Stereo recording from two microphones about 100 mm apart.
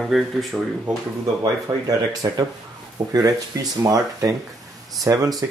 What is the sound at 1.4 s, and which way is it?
Speech, 40° right (ahead or behind).